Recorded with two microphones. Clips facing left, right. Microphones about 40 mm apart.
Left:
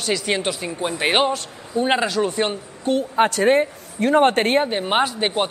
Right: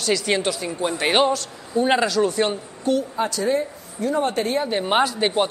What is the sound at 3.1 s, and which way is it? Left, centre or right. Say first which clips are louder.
A woman's voice: left 6 dB; left.